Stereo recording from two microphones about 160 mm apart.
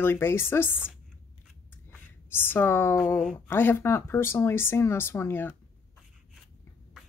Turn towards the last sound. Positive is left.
turn(degrees=15)  # may be behind; listen again after turning